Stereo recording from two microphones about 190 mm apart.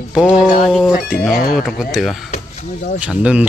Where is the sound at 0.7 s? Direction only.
Centre (ahead or behind).